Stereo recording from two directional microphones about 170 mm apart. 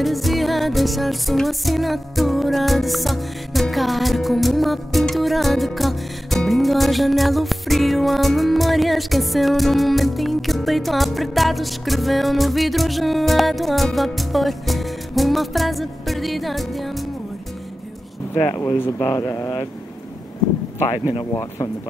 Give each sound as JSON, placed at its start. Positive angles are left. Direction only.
{"t": 0.0, "sound": "music", "side_deg": 0}
{"t": 18.3, "sound": "speech", "side_deg": 10}